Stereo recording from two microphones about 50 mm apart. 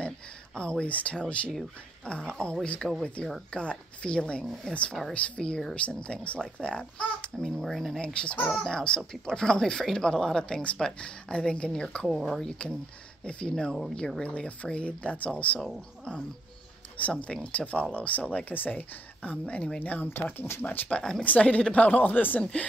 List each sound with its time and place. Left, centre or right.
0.6 s a child's voice: centre
7.3 s speech: centre
8.0 s a child's voice: left
12.1 s speech: centre
12.4 s a child's voice: centre
14.2 s a child's voice: left
16.9 s a child's voice: left
20.9 s speech: centre
21.2 s speech: left
22.4 s a child's voice: left